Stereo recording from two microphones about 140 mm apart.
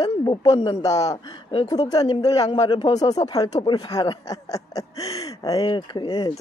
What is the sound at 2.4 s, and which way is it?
Speech, 45° left (ahead or behind).